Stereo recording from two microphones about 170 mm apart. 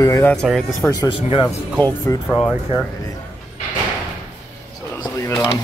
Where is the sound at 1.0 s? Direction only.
30° left (ahead or behind).